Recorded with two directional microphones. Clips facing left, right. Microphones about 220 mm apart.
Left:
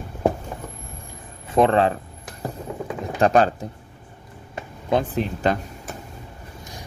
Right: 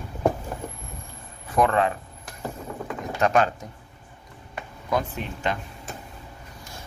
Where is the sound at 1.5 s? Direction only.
25° left (ahead or behind).